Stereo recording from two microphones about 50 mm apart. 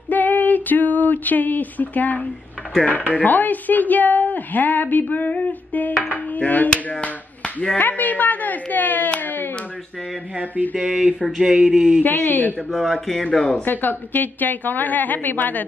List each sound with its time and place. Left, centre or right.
0.1 s a sound: left
2.8 s speech: left
9.2 s a sound: left
10.3 s mantra: right
10.8 s speech: centre
12.0 s speech: left
12.7 s speech: centre
13.7 s speech: left